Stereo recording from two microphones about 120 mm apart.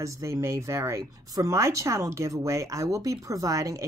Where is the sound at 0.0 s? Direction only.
25° right (ahead or behind).